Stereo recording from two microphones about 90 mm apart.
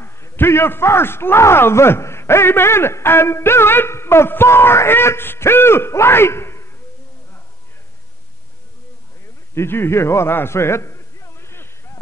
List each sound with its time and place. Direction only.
0.0 s a man's voice: 30° left (ahead or behind)
9.6 s a man's voice: 25° left (ahead or behind)